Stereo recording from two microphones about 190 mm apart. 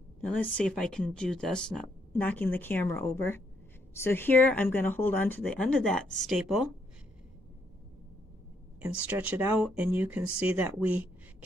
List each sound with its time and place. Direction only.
0.2 s speech: 5° left (ahead or behind)
8.8 s speech: 10° right (ahead or behind)